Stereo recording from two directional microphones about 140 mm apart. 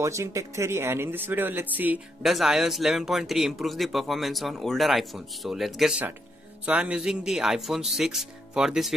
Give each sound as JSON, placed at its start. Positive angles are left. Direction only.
{"t": 0.0, "sound": "speech", "side_deg": -20}
{"t": 2.2, "sound": "speech", "side_deg": 0}